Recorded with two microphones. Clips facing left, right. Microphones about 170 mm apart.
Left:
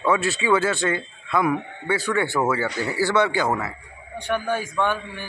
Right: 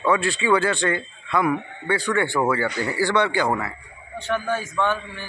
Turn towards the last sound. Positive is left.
turn(degrees=15)  # may be behind; listen again after turning